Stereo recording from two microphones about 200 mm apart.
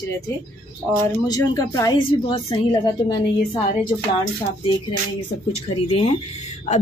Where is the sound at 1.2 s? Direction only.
20° left (ahead or behind).